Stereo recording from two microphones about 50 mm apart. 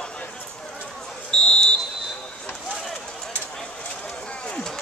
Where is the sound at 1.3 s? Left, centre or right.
Centre.